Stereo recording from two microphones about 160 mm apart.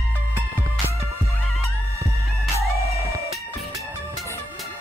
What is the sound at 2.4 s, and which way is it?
Music, centre (ahead or behind).